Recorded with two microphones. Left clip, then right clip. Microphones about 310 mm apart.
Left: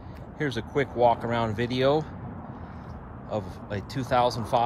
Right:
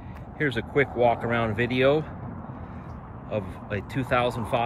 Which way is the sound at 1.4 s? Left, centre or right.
Centre.